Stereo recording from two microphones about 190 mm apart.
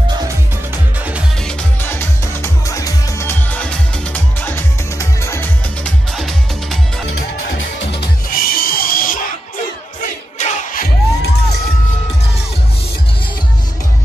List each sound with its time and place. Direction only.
1.8 s music: 10° left (ahead or behind)
6.1 s music: centre (ahead or behind)
7.9 s music: 55° left (ahead or behind)
10.4 s music: 45° left (ahead or behind)